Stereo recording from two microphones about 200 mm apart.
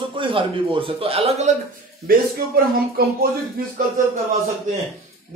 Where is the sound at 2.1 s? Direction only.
50° right (ahead or behind).